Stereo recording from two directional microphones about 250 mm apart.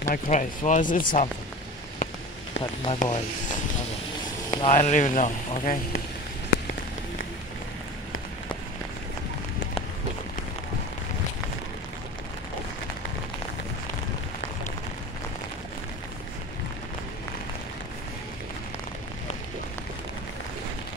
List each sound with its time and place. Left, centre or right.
0.0 s speech: left
2.6 s speech: left
4.5 s speech: left